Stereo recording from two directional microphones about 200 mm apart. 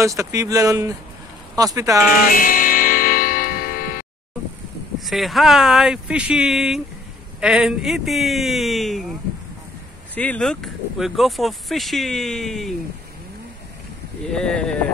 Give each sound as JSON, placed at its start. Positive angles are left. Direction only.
{"t": 0.0, "sound": "speech", "side_deg": -15}
{"t": 2.3, "sound": "music", "side_deg": 45}
{"t": 5.0, "sound": "speech", "side_deg": 0}
{"t": 10.1, "sound": "speech", "side_deg": 5}
{"t": 14.3, "sound": "speech", "side_deg": 5}